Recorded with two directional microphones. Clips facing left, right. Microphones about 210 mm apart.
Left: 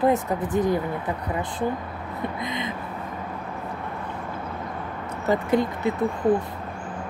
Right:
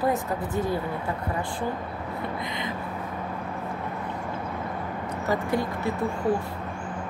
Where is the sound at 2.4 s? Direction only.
20° left (ahead or behind).